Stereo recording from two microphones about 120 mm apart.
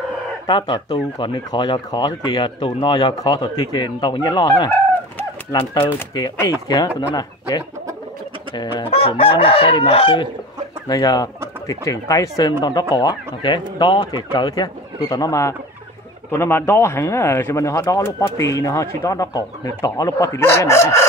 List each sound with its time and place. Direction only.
0.5 s speech: 40° left (ahead or behind)
5.5 s chicken: 45° left (ahead or behind)
6.1 s speech: 35° left (ahead or behind)
8.7 s chicken: 50° left (ahead or behind)
10.9 s speech: 30° left (ahead or behind)